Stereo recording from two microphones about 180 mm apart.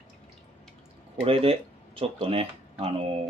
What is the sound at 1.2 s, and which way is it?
Speech, 35° right (ahead or behind).